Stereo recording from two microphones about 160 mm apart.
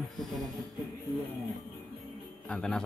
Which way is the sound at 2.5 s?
5° left (ahead or behind).